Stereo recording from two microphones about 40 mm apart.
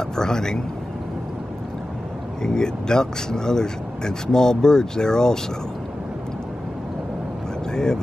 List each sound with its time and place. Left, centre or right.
0.2 s speech: centre
2.4 s speech: centre
7.7 s speech: centre